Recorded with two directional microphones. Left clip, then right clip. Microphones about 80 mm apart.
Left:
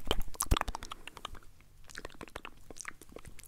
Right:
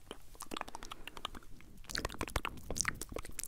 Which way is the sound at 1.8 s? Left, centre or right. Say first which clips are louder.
Right 7 dB; right.